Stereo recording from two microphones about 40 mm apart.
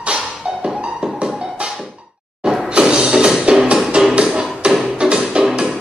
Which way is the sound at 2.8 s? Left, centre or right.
Centre.